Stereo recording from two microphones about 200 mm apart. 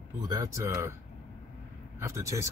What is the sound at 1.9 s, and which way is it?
Speech, 15° right (ahead or behind).